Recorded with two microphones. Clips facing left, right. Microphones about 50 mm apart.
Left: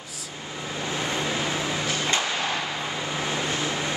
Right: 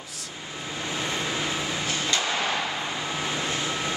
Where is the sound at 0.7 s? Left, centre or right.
Centre.